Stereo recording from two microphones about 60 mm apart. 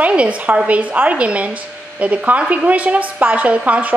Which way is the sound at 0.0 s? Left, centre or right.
Right.